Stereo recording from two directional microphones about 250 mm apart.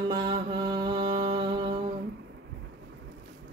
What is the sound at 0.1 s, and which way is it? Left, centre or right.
Music, centre.